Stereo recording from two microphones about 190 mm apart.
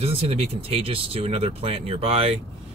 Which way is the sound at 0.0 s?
30° right (ahead or behind).